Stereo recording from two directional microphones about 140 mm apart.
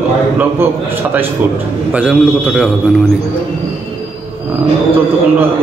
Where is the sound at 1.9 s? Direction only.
10° right (ahead or behind).